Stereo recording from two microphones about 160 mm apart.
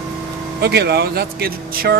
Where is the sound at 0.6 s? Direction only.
90° right; by 2.0 s 70° right (ahead or behind).